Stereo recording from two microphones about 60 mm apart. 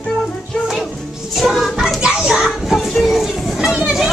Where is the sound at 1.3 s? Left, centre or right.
Centre.